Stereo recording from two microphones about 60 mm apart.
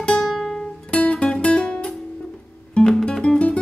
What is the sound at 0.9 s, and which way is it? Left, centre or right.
Music, left.